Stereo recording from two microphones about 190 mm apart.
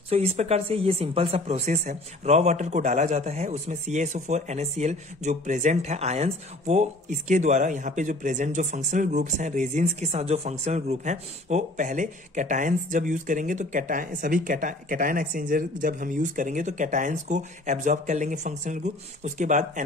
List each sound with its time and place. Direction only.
0.1 s speech: 35° right (ahead or behind)